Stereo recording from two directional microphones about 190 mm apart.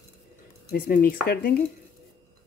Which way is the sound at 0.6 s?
45° left (ahead or behind).